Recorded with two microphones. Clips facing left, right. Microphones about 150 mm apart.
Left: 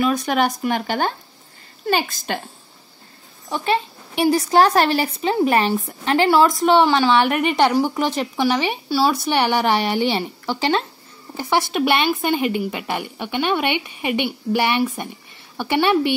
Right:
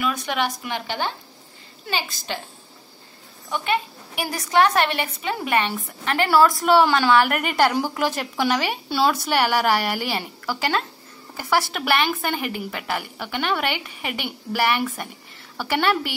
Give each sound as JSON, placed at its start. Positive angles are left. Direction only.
{"t": 0.0, "sound": "speech", "side_deg": 35}
{"t": 3.4, "sound": "a woman's voice", "side_deg": 30}